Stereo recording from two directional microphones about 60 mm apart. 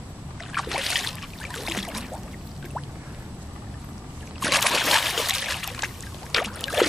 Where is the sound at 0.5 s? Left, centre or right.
Centre.